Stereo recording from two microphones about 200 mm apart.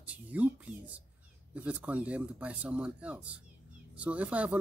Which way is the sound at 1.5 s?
5° right (ahead or behind).